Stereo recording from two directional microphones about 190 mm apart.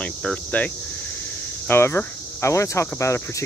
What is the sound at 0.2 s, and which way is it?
Speech, 5° left (ahead or behind).